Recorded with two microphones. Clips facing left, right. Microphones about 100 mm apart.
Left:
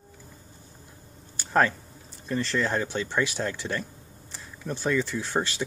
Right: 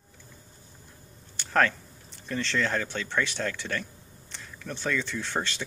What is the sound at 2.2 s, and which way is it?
Speech, 5° left (ahead or behind).